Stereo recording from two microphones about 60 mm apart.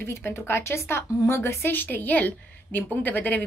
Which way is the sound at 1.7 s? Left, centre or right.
Left.